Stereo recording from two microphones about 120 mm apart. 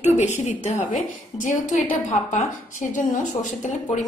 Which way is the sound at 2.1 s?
80° left.